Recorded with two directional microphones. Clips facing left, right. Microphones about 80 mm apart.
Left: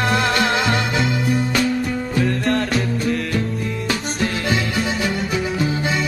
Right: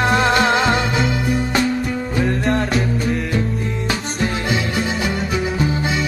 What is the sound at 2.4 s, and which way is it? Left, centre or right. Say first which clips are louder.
Music: right 1 dB; centre.